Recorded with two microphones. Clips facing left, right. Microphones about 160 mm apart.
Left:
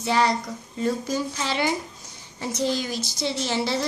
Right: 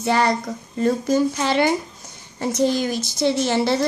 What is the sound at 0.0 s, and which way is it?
A woman's voice, 55° right (ahead or behind).